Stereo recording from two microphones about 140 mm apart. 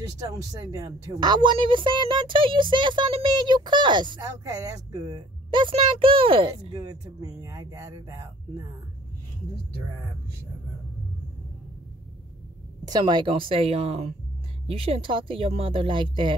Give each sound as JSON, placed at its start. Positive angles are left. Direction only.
{"t": 0.3, "sound": "speech", "side_deg": -25}
{"t": 12.8, "sound": "speech", "side_deg": -30}